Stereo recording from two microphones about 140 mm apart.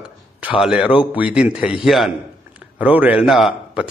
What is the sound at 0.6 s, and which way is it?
A man's voice, 5° right (ahead or behind).